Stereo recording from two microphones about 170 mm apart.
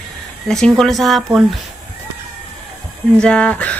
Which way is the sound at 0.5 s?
5° left (ahead or behind).